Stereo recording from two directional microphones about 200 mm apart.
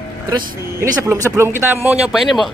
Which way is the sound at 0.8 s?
10° right (ahead or behind).